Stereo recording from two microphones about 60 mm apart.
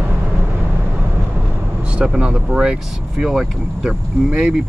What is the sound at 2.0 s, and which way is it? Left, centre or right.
Speech, centre.